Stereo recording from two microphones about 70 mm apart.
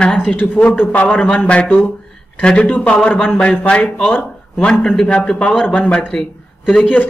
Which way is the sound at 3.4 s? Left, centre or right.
Centre.